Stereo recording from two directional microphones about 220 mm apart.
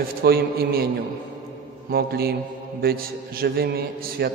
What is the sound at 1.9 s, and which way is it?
A man's voice, 45° right (ahead or behind).